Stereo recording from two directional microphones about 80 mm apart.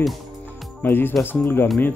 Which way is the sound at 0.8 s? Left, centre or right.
Left.